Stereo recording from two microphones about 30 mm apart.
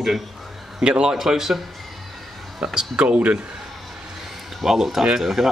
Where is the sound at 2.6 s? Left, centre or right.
Right.